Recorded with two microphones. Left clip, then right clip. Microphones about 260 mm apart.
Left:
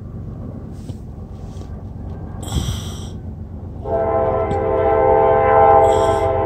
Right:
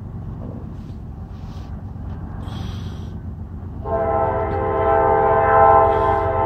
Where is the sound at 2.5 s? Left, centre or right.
Left.